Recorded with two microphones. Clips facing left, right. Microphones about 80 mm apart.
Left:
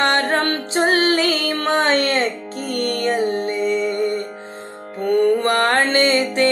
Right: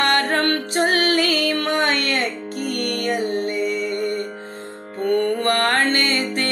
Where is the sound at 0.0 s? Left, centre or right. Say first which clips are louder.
Left 1 dB; left.